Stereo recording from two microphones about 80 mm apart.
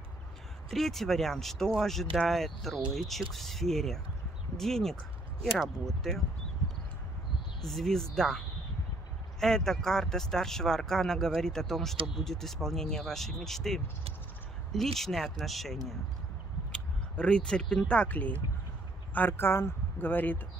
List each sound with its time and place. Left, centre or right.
0.7 s speech: centre
7.6 s speech: centre
9.4 s speech: centre; by 20.3 s left